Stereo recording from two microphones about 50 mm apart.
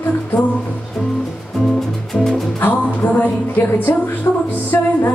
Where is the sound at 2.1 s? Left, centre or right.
Centre.